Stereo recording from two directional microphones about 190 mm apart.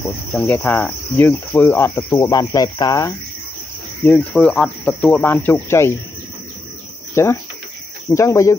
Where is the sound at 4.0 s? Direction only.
10° left (ahead or behind).